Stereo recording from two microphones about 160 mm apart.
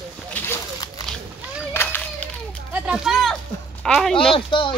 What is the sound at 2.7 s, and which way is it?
Speech, 5° right (ahead or behind).